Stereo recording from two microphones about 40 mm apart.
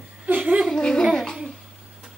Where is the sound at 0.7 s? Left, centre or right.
Centre.